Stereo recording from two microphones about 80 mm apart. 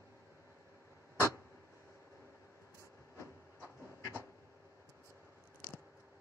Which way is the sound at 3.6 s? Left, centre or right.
Right.